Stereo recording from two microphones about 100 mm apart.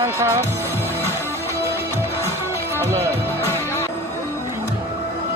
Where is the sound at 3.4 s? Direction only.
25° left (ahead or behind).